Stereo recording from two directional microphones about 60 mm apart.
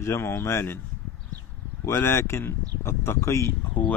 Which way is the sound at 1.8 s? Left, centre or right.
Left.